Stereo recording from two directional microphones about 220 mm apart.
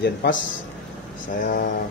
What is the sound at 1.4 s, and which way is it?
Speech, 40° left (ahead or behind).